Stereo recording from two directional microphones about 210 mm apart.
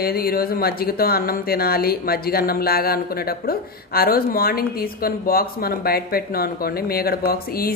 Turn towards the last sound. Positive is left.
turn(degrees=45)  # may be behind; listen again after turning